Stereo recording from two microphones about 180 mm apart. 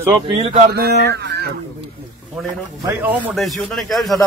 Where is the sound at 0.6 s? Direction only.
60° right (ahead or behind).